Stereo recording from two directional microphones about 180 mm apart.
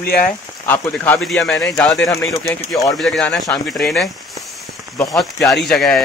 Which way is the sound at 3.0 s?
5° left (ahead or behind).